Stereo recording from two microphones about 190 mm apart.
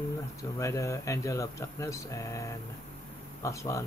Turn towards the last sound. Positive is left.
turn(degrees=15)  # may be behind; listen again after turning